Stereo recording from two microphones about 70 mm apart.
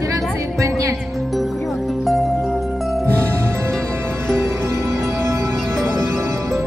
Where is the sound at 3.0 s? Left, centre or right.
Right.